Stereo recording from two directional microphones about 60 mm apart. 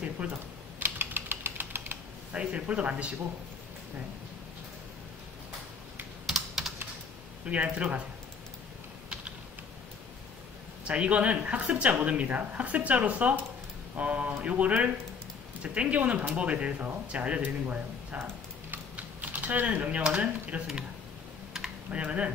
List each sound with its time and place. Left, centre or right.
0.0 s typing: right
2.3 s speech: centre
6.2 s typing: centre
7.4 s speech: right
10.9 s speech: right
18.9 s typing: right
20.0 s speech: right
21.9 s speech: right